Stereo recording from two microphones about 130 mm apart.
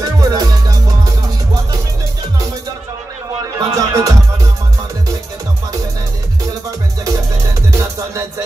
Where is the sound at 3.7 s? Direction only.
25° right (ahead or behind).